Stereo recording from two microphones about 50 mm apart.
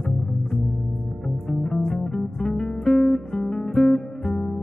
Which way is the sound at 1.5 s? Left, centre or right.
Centre.